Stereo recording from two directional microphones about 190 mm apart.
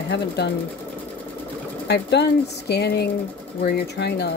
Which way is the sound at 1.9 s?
65° left (ahead or behind).